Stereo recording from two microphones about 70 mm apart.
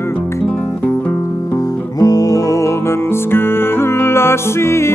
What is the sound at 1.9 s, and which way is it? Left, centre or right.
Music, left.